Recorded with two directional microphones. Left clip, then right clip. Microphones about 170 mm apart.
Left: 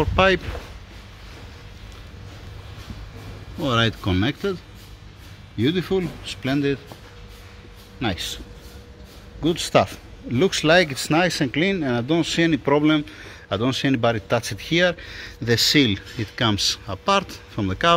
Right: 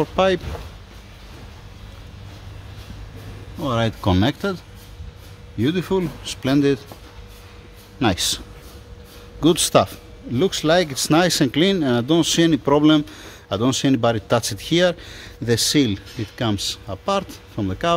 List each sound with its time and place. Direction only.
0.0 s a man's voice: 10° right (ahead or behind)
4.0 s speech: 35° right (ahead or behind)
5.6 s speech: 20° right (ahead or behind)
8.0 s speech: 30° right (ahead or behind)
9.4 s speech: 30° right (ahead or behind)
9.8 s a man's voice: 10° right (ahead or behind)
11.1 s a man's voice: 20° right (ahead or behind); by 17.9 s 5° right (ahead or behind)